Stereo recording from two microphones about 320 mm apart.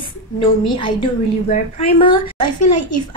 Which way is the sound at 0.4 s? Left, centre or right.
Centre.